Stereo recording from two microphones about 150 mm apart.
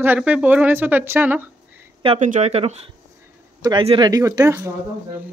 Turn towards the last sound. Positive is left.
turn(degrees=-20)  # may be behind; listen again after turning